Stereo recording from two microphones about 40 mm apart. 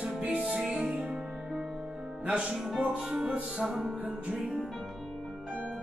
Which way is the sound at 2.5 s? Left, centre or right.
Centre.